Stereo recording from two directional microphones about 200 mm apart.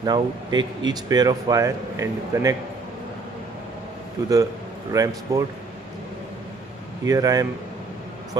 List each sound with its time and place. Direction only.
0.0 s speech: 20° right (ahead or behind)
4.2 s speech: 15° right (ahead or behind)
7.1 s speech: 20° right (ahead or behind)